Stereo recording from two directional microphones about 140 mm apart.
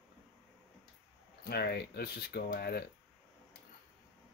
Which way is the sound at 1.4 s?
90° left.